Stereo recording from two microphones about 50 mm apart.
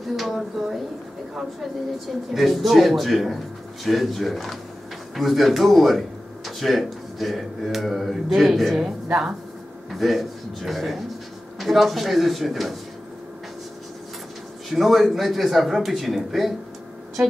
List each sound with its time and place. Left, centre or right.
0.0 s a man's voice: centre
2.3 s a man's voice: centre
8.8 s speech: centre
9.8 s a man's voice: centre
14.7 s a man's voice: centre